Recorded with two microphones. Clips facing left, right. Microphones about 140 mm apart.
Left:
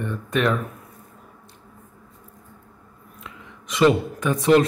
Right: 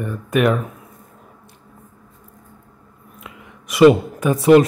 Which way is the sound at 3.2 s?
10° right (ahead or behind).